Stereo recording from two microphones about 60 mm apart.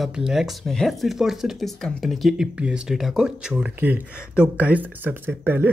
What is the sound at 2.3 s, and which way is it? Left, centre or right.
Speech, centre.